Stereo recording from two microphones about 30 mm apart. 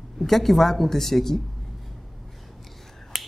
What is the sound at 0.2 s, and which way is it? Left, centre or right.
A woman's voice, centre.